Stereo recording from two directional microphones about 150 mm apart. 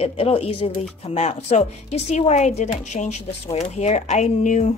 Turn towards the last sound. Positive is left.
turn(degrees=55)  # may be behind; listen again after turning